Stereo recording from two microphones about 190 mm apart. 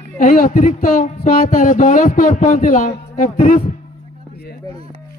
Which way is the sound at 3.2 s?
40° left (ahead or behind).